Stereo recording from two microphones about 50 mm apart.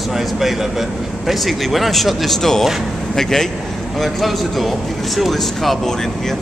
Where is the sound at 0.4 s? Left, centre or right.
Centre.